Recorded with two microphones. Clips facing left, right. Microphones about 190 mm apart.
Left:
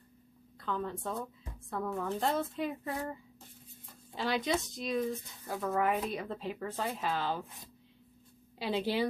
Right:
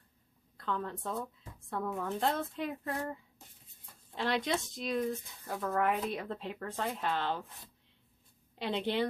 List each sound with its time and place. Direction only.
0.6 s a woman's voice: centre (ahead or behind)
8.5 s a woman's voice: 5° left (ahead or behind)